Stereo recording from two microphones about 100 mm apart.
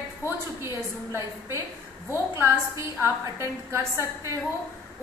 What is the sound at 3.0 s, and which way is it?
A woman's voice, 25° right (ahead or behind).